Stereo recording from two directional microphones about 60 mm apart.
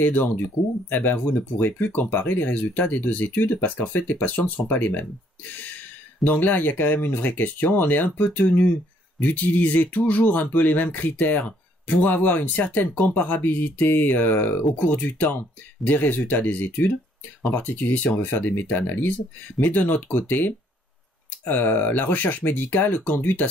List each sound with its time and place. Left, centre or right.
0.0 s speech: left